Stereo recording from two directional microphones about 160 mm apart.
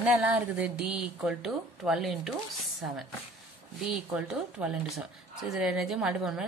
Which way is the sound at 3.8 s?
5° right (ahead or behind).